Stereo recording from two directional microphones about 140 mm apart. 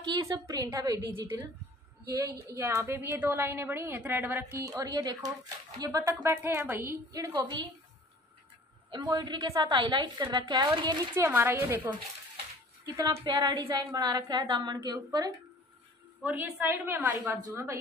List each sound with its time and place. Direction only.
0.0 s a woman's voice: 30° right (ahead or behind)
2.4 s a woman's voice: 20° right (ahead or behind)
8.9 s a woman's voice: 30° right (ahead or behind)
11.2 s a woman's voice: 15° right (ahead or behind)
16.2 s a woman's voice: 10° right (ahead or behind)